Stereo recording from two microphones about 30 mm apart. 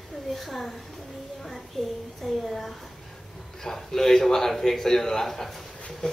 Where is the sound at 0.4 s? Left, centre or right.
Centre.